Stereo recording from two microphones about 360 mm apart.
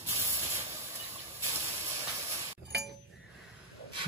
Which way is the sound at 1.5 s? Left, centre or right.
Centre.